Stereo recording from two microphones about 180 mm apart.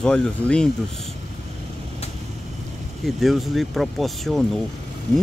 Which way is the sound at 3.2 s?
Centre (ahead or behind).